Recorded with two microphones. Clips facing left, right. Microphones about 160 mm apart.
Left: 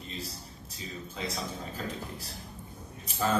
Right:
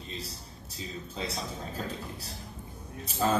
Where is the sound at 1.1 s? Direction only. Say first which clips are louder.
Right 1 dB; 30° right (ahead or behind).